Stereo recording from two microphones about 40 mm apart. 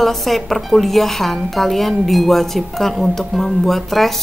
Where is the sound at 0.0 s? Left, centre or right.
Centre.